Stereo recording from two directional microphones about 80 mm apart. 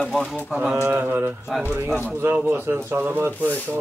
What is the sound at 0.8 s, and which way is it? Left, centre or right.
Mantra, right.